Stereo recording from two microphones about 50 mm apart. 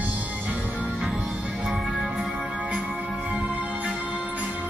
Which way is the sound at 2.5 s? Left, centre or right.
Right.